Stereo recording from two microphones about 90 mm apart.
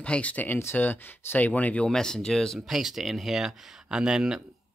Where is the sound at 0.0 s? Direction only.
15° left (ahead or behind).